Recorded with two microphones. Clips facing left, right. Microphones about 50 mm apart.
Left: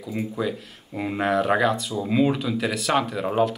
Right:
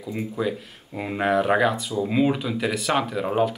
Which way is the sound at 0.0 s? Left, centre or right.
Centre.